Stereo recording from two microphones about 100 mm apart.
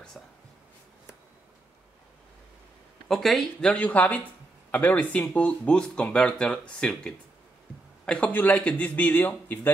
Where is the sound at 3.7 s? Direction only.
15° left (ahead or behind).